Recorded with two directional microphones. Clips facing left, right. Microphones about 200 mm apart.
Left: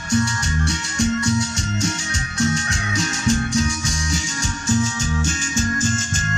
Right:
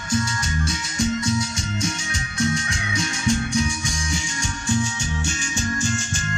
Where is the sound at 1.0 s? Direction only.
75° left (ahead or behind).